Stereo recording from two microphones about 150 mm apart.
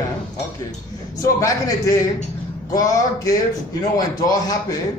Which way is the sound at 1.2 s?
20° left (ahead or behind).